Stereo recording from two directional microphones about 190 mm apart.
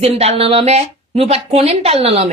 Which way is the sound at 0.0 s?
30° right (ahead or behind).